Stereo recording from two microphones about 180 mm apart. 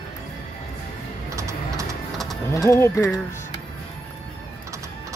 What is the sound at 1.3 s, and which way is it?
Typing, 15° right (ahead or behind).